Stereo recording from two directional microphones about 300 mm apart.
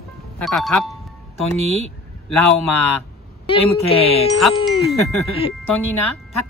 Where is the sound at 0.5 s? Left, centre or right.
Centre.